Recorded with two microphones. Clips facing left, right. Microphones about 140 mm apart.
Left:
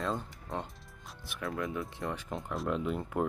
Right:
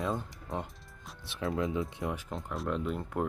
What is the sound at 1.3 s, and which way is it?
Speech, 25° right (ahead or behind).